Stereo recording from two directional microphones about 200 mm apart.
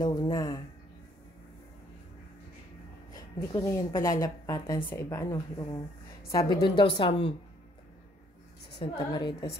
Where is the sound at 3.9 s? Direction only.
45° left (ahead or behind).